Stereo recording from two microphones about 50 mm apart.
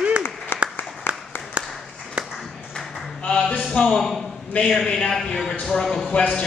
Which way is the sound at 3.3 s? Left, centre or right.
Centre.